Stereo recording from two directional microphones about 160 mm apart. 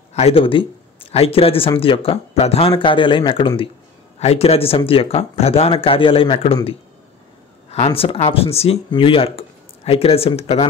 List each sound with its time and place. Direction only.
0.1 s speech: 40° left (ahead or behind)